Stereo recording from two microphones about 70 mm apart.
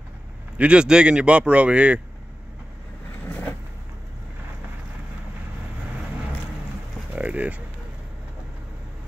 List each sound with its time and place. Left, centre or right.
0.6 s speech: centre
3.3 s vehicle: left
7.1 s a sound: right